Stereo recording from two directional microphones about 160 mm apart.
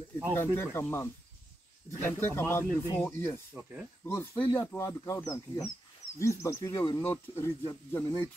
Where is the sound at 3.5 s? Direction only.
5° right (ahead or behind).